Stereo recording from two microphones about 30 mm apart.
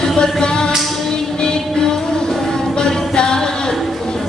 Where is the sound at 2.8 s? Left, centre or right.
Left.